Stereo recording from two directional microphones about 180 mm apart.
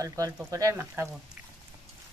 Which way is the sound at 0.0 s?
15° right (ahead or behind).